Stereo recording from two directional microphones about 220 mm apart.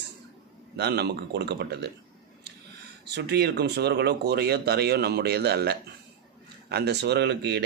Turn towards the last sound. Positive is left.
turn(degrees=-50)  # may be behind; listen again after turning